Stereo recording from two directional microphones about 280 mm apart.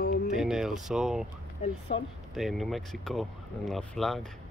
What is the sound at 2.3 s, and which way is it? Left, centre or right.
Speech, centre.